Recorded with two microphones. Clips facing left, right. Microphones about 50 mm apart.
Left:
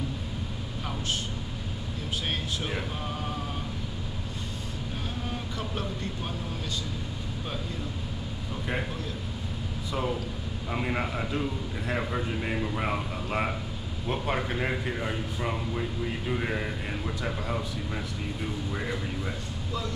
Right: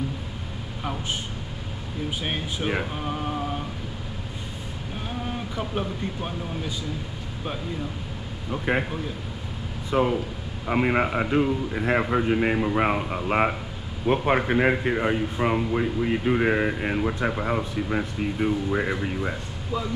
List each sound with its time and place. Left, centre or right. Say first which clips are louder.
2.2 s speech: right 3 dB; centre
5.6 s speech: right 7 dB; centre
8.7 s a man's voice: right 8 dB; right
9.8 s a man's voice: right 8 dB; right